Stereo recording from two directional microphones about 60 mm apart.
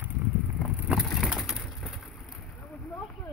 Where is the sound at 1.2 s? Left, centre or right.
Centre.